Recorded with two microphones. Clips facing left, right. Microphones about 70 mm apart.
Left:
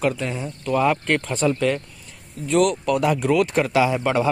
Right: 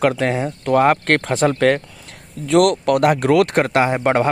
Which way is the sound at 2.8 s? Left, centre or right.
Right.